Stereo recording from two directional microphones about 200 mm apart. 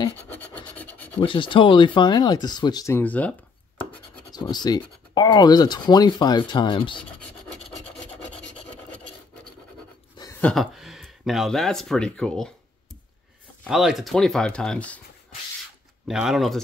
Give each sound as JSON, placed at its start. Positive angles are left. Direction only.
{"t": 0.3, "sound": "filing", "side_deg": 10}
{"t": 1.2, "sound": "speech", "side_deg": 25}
{"t": 4.3, "sound": "speech", "side_deg": 20}
{"t": 7.6, "sound": "filing", "side_deg": 5}
{"t": 10.4, "sound": "speech", "side_deg": 0}
{"t": 13.7, "sound": "speech", "side_deg": 0}
{"t": 16.1, "sound": "speech", "side_deg": 0}